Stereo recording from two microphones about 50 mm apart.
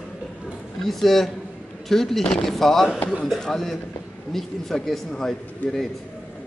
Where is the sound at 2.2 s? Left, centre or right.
Centre.